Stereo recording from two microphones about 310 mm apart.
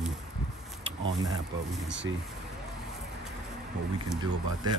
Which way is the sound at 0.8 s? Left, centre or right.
Right.